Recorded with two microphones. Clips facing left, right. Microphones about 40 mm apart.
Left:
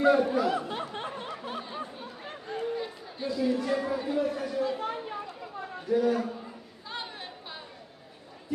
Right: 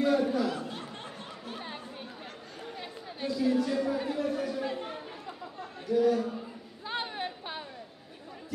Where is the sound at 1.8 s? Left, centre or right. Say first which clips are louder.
Left 4 dB; left.